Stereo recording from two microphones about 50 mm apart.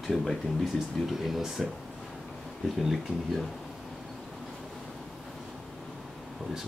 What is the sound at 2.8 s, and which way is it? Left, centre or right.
Speech, centre.